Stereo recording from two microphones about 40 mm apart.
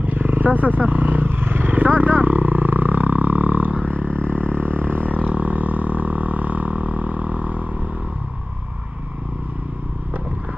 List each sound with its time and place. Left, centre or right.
0.0 s wild animals: right
4.5 s vehicle: right